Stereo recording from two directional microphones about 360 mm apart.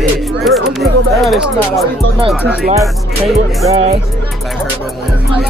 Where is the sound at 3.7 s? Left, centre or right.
Centre.